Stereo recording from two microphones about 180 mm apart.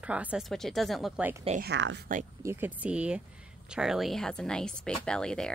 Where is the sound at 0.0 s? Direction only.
5° right (ahead or behind).